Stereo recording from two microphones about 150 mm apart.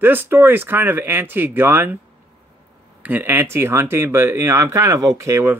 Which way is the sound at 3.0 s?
10° right (ahead or behind).